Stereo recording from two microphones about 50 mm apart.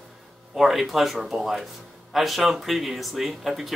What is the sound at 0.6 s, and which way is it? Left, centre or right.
Speech, centre.